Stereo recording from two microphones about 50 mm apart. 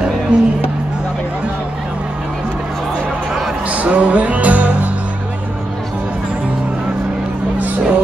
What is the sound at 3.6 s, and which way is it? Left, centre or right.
Music, right.